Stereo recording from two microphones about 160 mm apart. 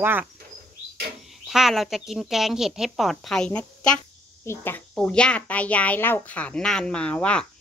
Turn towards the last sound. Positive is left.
turn(degrees=5)  # may be behind; listen again after turning